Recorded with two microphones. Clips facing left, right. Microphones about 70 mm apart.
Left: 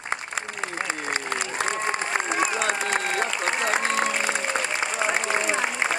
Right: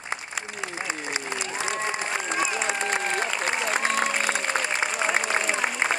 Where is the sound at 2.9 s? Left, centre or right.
Centre.